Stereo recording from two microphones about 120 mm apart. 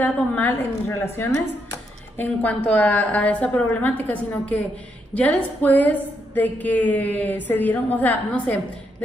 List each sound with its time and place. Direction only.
0.0 s a woman's voice: 15° left (ahead or behind)
2.1 s a woman's voice: 15° left (ahead or behind)